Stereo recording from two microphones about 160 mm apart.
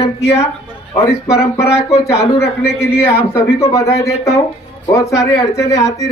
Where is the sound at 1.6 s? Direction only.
15° left (ahead or behind).